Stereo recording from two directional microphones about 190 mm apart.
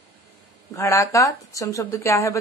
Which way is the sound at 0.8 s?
15° left (ahead or behind).